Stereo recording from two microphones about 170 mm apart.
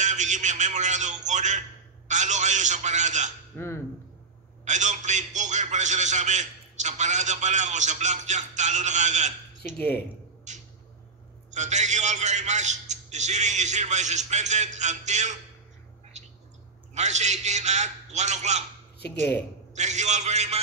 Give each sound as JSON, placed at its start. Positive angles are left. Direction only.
{"t": 0.0, "sound": "a man's voice", "side_deg": -45}
{"t": 3.5, "sound": "speech", "side_deg": 15}
{"t": 4.6, "sound": "a man's voice", "side_deg": -45}
{"t": 9.8, "sound": "speech", "side_deg": 75}
{"t": 10.5, "sound": "a sound", "side_deg": -45}
{"t": 11.5, "sound": "a man's voice", "side_deg": -45}
{"t": 16.1, "sound": "a sound", "side_deg": -40}
{"t": 16.9, "sound": "a man's voice", "side_deg": -40}
{"t": 18.9, "sound": "speech", "side_deg": 75}
{"t": 19.7, "sound": "a man's voice", "side_deg": -45}